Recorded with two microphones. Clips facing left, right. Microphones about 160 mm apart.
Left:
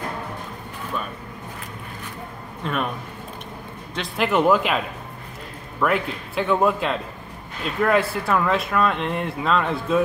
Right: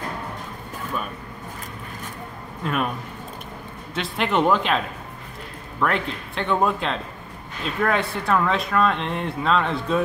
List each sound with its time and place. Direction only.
2.6 s speech: 5° right (ahead or behind)
3.9 s speech: centre (ahead or behind)
5.8 s speech: 5° left (ahead or behind)